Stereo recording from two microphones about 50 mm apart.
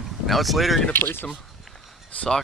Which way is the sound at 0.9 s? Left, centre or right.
Left.